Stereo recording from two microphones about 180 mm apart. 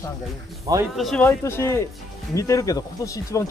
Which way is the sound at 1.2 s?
15° left (ahead or behind).